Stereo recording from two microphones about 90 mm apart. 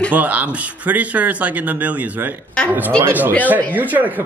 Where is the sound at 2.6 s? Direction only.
10° left (ahead or behind).